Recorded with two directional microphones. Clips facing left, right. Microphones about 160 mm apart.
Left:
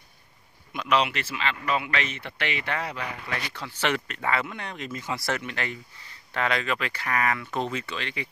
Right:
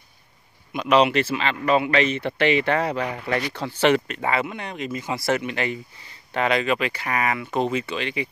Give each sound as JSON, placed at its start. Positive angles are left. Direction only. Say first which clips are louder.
{"t": 0.7, "sound": "speech", "louder": "right 7 dB", "side_deg": -25}